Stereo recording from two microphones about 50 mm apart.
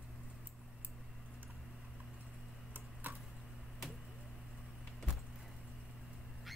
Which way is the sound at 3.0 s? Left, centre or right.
Right.